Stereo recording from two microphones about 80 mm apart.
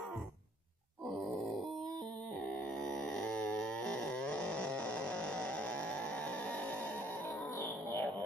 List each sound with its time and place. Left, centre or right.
1.0 s grunt: centre
2.5 s a sound: centre
7.5 s music: left